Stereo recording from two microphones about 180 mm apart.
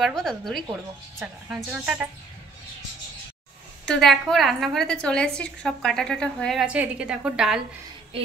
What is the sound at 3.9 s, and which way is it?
A woman's voice, centre (ahead or behind).